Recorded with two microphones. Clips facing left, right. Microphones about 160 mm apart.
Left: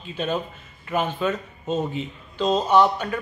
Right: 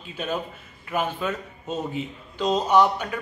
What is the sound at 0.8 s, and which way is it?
A man's voice, 10° right (ahead or behind).